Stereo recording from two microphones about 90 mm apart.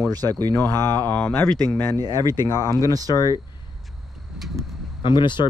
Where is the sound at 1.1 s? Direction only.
15° left (ahead or behind).